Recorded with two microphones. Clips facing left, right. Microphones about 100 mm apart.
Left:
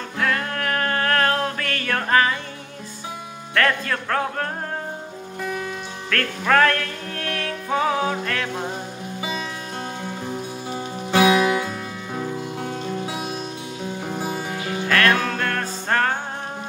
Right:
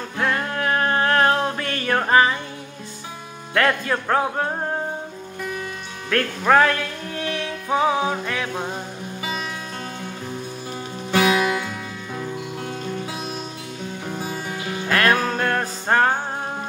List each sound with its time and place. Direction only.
0.2 s music: 20° right (ahead or behind)
3.5 s speech: 20° right (ahead or behind)
6.0 s music: 20° right (ahead or behind)
11.1 s music: 20° left (ahead or behind)
15.0 s music: 20° right (ahead or behind)